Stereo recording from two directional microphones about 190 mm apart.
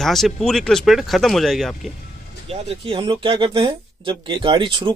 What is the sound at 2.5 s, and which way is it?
Speech, 30° right (ahead or behind).